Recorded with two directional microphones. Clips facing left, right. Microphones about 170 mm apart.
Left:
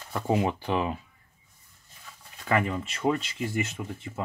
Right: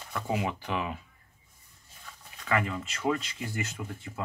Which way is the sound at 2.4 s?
25° left (ahead or behind).